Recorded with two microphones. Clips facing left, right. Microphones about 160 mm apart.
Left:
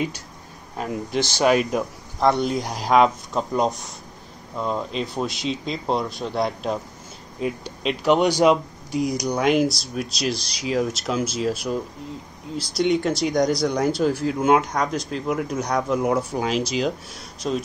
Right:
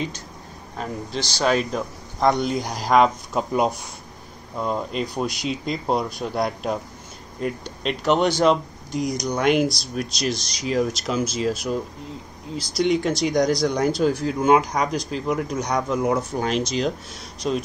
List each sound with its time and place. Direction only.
1.4 s speech: 10° left (ahead or behind)